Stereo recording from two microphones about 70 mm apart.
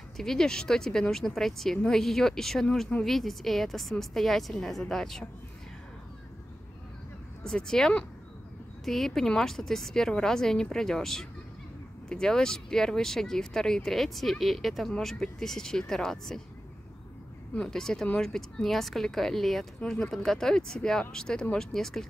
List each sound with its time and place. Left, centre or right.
0.2 s speech: centre
7.4 s speech: centre
17.6 s speech: centre
19.8 s speech: centre